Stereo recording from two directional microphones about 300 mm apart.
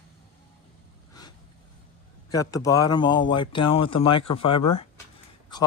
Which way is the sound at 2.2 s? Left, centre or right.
Centre.